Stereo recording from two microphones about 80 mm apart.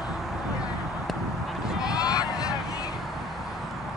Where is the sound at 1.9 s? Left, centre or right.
Left.